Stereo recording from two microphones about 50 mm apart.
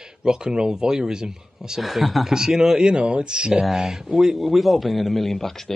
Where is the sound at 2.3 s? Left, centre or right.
Centre.